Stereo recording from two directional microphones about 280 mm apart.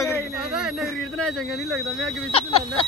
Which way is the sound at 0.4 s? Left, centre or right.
Centre.